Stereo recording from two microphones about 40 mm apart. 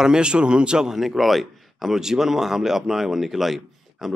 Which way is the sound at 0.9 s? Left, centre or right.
Centre.